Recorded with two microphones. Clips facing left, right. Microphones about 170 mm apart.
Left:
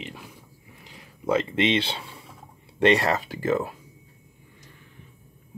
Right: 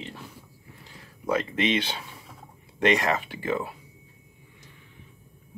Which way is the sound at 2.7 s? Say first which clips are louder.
Left 3 dB; 30° left (ahead or behind).